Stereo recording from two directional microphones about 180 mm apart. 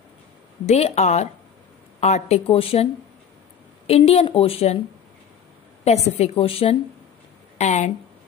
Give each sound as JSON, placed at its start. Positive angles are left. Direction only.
{"t": 0.7, "sound": "a woman's voice", "side_deg": 35}
{"t": 5.9, "sound": "a woman's voice", "side_deg": 35}